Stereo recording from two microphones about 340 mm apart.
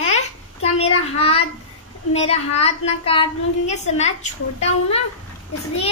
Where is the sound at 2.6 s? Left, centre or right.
Centre.